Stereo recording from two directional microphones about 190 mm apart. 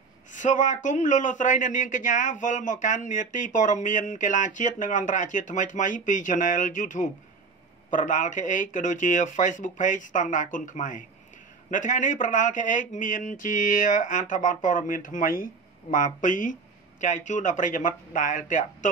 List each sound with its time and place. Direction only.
0.3 s a man's voice: 40° left (ahead or behind)